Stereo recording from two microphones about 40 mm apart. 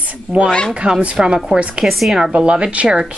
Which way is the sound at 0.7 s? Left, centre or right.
Right.